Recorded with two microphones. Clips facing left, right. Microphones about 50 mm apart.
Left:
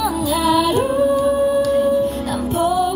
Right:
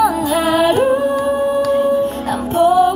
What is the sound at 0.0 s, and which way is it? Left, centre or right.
Music, right.